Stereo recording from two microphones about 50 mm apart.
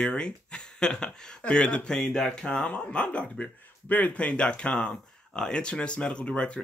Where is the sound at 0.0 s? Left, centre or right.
Centre.